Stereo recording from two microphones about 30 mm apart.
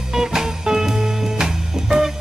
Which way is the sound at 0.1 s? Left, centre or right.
Centre.